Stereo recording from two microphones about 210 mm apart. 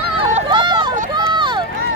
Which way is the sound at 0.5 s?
20° right (ahead or behind).